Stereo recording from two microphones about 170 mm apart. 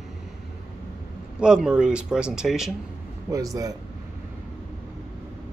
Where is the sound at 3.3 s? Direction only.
20° right (ahead or behind).